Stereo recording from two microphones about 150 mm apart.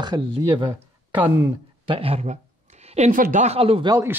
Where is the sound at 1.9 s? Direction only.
40° right (ahead or behind).